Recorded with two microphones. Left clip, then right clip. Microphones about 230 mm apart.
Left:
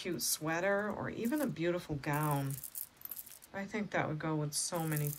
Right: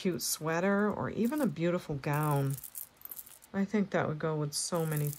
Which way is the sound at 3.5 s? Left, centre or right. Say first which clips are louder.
Right 5 dB; right.